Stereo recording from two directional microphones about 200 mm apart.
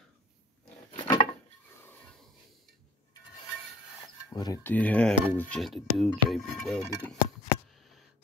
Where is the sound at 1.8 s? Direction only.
10° left (ahead or behind).